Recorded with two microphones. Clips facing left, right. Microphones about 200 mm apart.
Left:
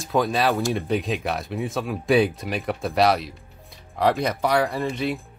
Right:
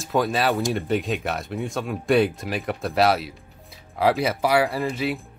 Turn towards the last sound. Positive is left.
turn(degrees=0)  # may be behind; listen again after turning